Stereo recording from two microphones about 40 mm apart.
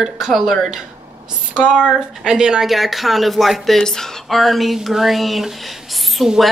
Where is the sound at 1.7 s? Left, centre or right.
Centre.